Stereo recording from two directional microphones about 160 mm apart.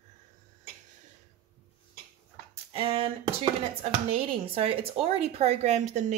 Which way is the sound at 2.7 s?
35° right (ahead or behind).